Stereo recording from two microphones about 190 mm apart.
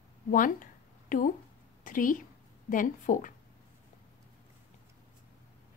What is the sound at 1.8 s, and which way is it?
Speech, 45° left (ahead or behind).